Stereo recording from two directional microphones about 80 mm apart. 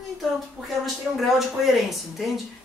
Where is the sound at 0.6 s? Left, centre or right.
Centre.